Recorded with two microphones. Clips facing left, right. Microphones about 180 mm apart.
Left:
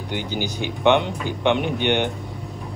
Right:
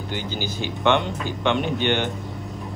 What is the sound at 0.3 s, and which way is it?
A man's voice, 15° left (ahead or behind).